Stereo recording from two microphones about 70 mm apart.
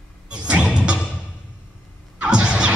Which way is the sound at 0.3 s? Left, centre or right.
Centre.